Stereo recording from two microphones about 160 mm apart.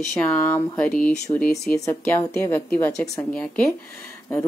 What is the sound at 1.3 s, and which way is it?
A woman's voice, 25° left (ahead or behind).